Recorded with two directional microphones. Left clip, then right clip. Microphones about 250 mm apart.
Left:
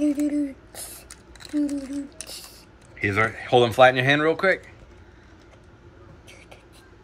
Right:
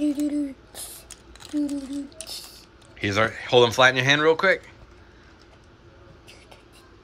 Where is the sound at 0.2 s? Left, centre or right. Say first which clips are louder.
Left 1 dB; centre.